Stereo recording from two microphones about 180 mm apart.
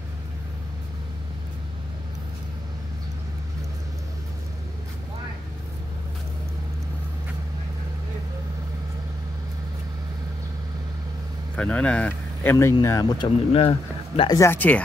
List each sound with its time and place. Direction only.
11.5 s speech: 5° left (ahead or behind); by 14.3 s 35° left (ahead or behind)
14.3 s speech: 15° left (ahead or behind)